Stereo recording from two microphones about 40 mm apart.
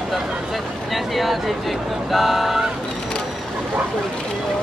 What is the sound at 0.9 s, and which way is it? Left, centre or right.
Speech, centre.